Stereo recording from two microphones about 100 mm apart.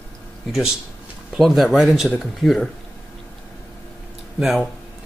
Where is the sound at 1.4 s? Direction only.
Centre (ahead or behind).